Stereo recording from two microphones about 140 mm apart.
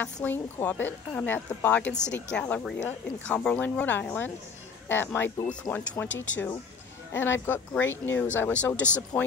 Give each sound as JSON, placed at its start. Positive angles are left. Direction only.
{"t": 0.0, "sound": "speech", "side_deg": 15}